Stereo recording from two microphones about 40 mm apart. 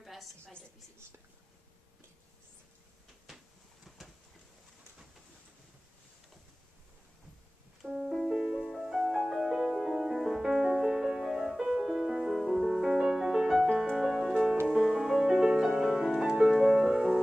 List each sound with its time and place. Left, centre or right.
0.0 s a sound: centre
7.8 s music: centre
8.1 s music: centre
8.4 s music: centre